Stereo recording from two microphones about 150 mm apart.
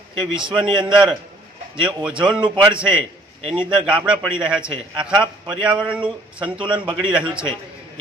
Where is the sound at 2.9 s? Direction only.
35° right (ahead or behind).